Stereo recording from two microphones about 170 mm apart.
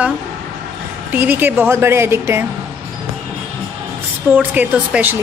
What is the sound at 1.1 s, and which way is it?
Speech, 10° right (ahead or behind).